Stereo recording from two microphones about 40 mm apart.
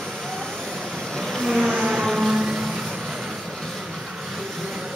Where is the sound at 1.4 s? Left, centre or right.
Centre.